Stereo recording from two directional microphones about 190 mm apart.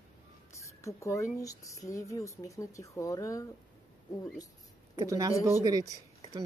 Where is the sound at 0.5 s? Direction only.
15° left (ahead or behind).